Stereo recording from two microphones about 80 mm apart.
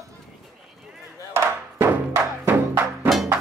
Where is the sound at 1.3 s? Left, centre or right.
Right.